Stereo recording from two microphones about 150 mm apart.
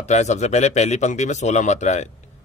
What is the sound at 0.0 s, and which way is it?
A man's voice, 50° left (ahead or behind).